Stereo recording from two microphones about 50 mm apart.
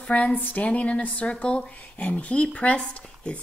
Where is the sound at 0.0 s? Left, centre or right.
Left.